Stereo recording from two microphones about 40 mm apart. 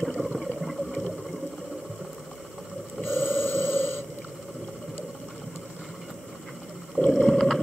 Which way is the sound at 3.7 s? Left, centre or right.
Left.